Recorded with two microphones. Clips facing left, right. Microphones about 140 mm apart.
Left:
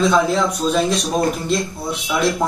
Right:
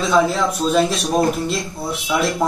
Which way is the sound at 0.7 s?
5° right (ahead or behind).